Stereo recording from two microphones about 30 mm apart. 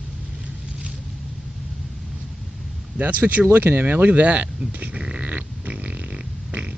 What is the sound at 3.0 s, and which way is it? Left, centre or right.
Speech, right.